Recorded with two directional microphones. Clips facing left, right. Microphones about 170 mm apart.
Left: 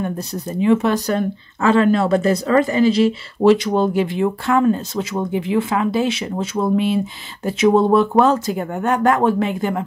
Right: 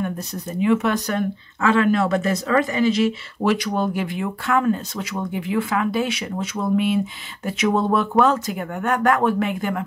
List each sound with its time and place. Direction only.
0.0 s speech: 30° left (ahead or behind)